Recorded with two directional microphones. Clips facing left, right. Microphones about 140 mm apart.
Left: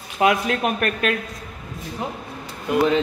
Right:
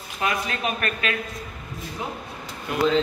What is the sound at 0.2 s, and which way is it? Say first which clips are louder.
Speech: left 7 dB; 75° left (ahead or behind).